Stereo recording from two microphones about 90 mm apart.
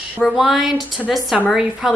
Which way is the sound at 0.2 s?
Centre (ahead or behind).